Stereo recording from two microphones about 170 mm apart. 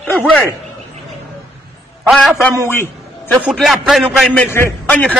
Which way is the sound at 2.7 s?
15° left (ahead or behind).